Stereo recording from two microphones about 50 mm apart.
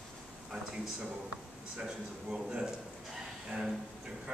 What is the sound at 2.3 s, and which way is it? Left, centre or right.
Speech, centre.